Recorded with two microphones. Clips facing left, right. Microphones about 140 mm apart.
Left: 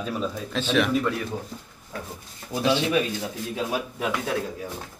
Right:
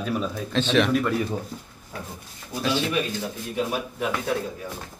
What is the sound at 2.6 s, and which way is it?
Speech, 20° left (ahead or behind).